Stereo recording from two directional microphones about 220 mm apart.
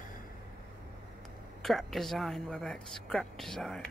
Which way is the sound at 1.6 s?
Centre (ahead or behind).